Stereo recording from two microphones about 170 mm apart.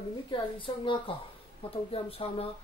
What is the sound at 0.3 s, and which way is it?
A woman's voice, 30° left (ahead or behind).